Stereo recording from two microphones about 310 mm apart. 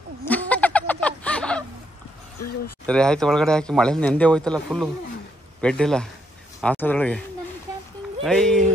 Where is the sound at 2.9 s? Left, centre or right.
Centre.